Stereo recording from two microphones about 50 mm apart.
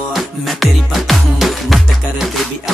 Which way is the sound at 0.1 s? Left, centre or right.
Centre.